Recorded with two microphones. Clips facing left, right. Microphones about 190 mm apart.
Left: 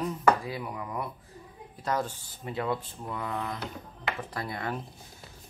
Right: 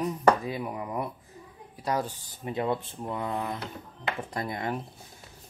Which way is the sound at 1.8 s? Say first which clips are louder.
Right 1 dB; 15° right (ahead or behind).